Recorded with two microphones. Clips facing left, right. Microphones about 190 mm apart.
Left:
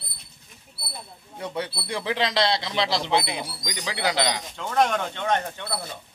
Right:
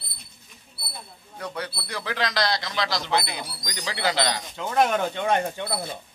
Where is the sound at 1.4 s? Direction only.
25° left (ahead or behind).